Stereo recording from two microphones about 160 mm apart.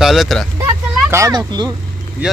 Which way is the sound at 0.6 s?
20° right (ahead or behind).